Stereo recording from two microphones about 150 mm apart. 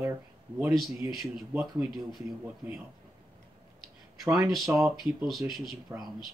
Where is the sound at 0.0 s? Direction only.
15° right (ahead or behind).